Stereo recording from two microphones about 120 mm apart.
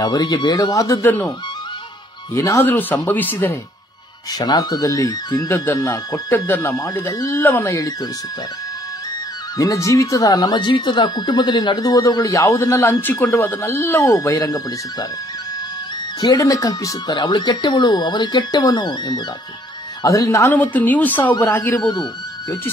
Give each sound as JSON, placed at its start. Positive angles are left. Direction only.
{"t": 0.0, "sound": "speech", "side_deg": 35}
{"t": 2.3, "sound": "speech", "side_deg": 25}
{"t": 4.3, "sound": "speech", "side_deg": 35}
{"t": 5.9, "sound": "speech", "side_deg": 25}
{"t": 9.6, "sound": "speech", "side_deg": 25}
{"t": 14.0, "sound": "speech", "side_deg": 30}
{"t": 16.2, "sound": "speech", "side_deg": 35}
{"t": 20.7, "sound": "speech", "side_deg": 15}